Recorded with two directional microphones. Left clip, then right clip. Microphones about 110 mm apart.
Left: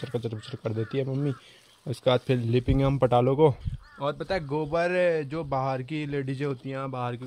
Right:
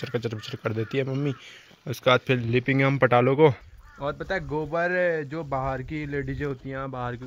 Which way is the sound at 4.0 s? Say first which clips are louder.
Even; 20° left (ahead or behind).